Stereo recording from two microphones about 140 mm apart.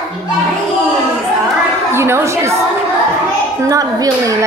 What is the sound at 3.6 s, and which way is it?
Speech, 25° right (ahead or behind).